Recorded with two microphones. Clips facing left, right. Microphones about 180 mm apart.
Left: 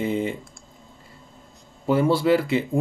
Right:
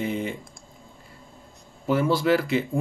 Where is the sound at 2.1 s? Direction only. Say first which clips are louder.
Left 2 dB; 25° left (ahead or behind).